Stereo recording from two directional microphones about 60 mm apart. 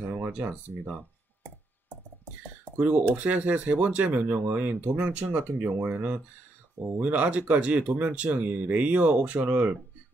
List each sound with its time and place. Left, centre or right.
0.4 s speech: right
2.7 s speech: right
7.2 s speech: right